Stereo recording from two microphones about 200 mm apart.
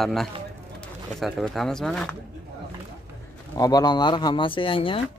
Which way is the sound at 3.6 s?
20° left (ahead or behind).